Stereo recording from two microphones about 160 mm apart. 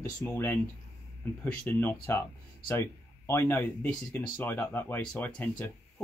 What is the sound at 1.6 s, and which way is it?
Speech, 15° left (ahead or behind).